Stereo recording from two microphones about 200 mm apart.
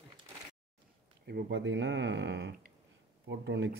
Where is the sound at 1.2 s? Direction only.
55° right (ahead or behind).